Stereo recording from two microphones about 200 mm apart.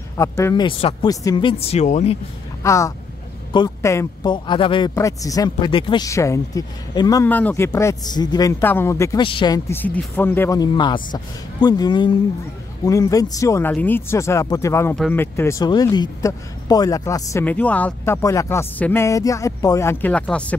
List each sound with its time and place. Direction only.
0.2 s a man's voice: 15° left (ahead or behind)
0.7 s speech: 25° left (ahead or behind)
2.6 s a man's voice: 15° left (ahead or behind)
9.2 s speech: 25° left (ahead or behind)
9.7 s a man's voice: 10° left (ahead or behind)